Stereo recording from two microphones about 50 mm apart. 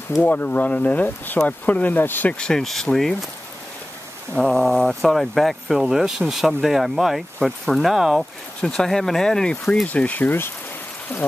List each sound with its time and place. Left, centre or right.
0.2 s speech: left
2.3 s speech: centre
2.6 s speech: centre
4.4 s speech: centre
8.7 s speech: centre
9.8 s speech: left